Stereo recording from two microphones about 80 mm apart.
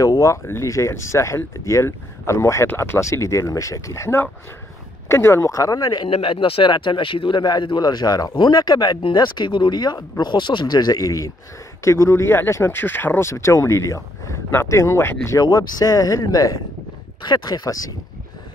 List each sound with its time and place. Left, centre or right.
0.0 s a sound: left
0.5 s speech: left
15.4 s speech: left
17.2 s speech: left